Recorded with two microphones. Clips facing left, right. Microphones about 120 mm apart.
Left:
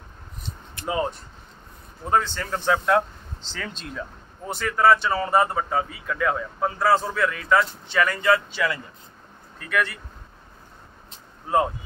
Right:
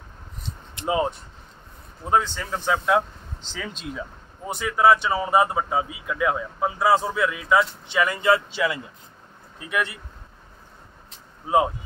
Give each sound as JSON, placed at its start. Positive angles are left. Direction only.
{"t": 0.7, "sound": "vehicle", "side_deg": -20}
{"t": 2.0, "sound": "speech", "side_deg": -10}
{"t": 11.4, "sound": "speech", "side_deg": -10}